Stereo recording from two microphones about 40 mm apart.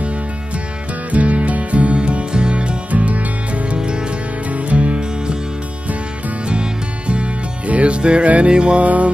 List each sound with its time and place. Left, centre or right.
1.1 s music: right
2.9 s music: right
6.4 s music: right
8.8 s mantra: right